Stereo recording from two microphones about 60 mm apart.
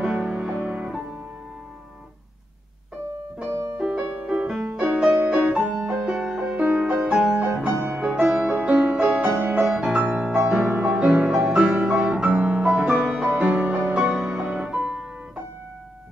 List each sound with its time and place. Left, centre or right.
0.0 s music: centre
3.7 s music: centre
6.1 s music: centre; by 14.1 s right
14.1 s music: centre